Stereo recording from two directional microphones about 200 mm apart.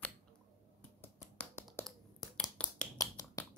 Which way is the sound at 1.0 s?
10° left (ahead or behind).